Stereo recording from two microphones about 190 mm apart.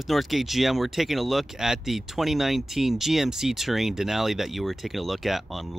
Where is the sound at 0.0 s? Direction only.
Centre (ahead or behind).